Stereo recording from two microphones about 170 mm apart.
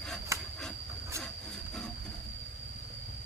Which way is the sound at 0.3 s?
15° right (ahead or behind).